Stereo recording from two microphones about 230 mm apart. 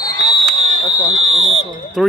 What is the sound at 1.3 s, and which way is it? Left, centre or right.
Fire alarm, right.